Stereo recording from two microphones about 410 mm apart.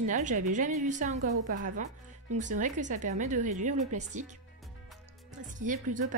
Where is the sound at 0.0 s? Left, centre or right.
Centre.